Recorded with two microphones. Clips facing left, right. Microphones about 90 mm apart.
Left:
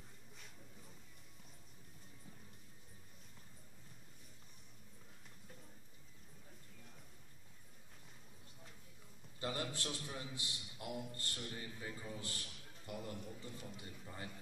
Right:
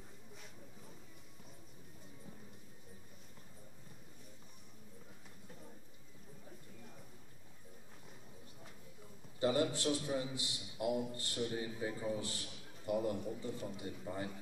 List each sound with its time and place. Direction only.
9.4 s a man's voice: 20° right (ahead or behind)